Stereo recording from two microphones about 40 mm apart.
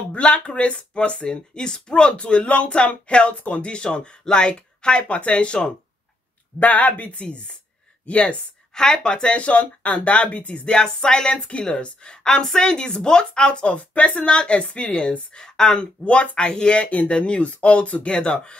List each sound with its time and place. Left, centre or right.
0.1 s a woman's voice: left
6.6 s speech: left
7.2 s a woman's voice: left
8.7 s a woman's voice: centre; by 10.6 s left
10.6 s a woman's voice: left
15.8 s a woman's voice: left